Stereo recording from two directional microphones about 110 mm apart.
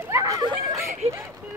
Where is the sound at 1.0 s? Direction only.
75° right (ahead or behind).